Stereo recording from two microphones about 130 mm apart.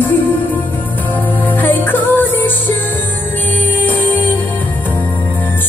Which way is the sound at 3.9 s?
15° left (ahead or behind).